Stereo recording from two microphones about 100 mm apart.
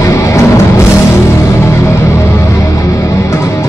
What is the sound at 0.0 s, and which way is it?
Music, 30° left (ahead or behind).